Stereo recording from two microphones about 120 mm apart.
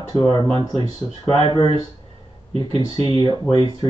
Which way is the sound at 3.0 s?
35° left (ahead or behind).